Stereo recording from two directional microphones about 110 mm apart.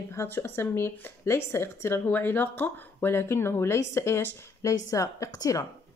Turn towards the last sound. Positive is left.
turn(degrees=35)  # may be behind; listen again after turning